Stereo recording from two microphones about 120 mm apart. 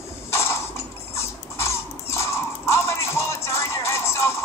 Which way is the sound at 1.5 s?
25° left (ahead or behind).